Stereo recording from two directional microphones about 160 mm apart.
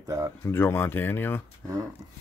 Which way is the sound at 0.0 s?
20° right (ahead or behind).